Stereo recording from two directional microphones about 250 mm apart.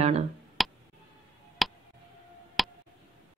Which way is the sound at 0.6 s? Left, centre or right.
Centre.